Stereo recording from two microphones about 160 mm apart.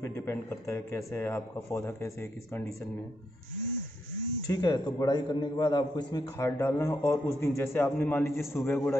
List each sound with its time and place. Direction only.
0.0 s speech: 15° left (ahead or behind)
4.5 s a man's voice: 25° left (ahead or behind)